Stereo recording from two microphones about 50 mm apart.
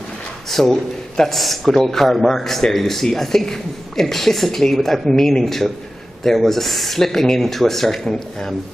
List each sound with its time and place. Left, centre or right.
0.5 s a man's voice: centre